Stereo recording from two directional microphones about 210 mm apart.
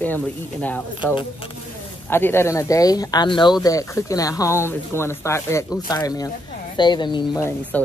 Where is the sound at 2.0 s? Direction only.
10° left (ahead or behind).